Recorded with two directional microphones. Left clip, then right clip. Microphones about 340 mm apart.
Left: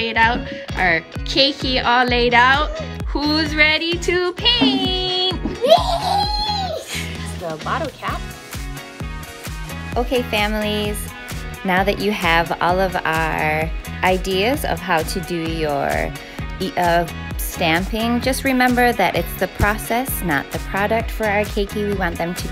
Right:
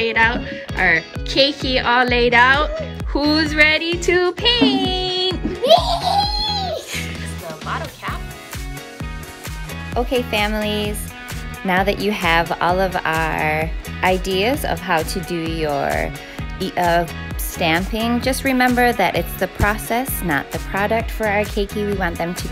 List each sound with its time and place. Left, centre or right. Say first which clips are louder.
0.0 s speech: even; centre
9.9 s speech: even; centre